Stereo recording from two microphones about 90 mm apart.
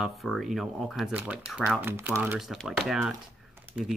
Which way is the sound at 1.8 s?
25° right (ahead or behind).